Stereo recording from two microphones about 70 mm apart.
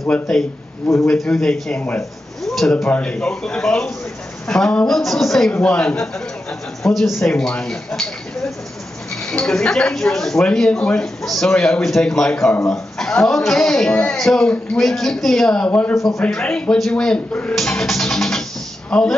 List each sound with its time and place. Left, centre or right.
0.1 s a man's voice: centre
2.0 s a sound: centre
2.9 s a man's voice: centre
5.5 s a man's voice: centre
6.8 s a man's voice: centre
11.5 s a man's voice: centre
17.6 s music: centre
18.9 s speech: centre